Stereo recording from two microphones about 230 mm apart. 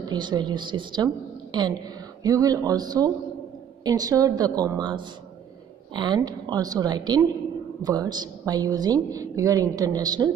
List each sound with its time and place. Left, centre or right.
0.1 s a woman's voice: centre